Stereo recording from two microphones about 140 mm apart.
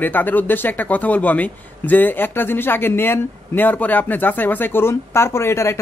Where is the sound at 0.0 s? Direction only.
15° left (ahead or behind).